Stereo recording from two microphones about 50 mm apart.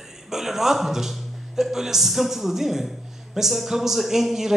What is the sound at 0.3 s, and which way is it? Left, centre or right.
A man's voice, centre.